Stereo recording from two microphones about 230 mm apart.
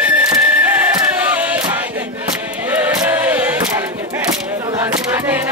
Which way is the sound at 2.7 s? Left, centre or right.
Centre.